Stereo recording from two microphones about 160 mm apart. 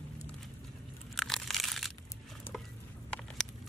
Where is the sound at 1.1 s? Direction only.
Centre (ahead or behind).